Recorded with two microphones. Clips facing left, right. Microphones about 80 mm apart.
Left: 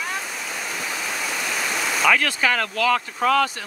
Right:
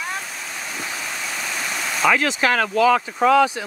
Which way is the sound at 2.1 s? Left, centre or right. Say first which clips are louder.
Right 2 dB; centre.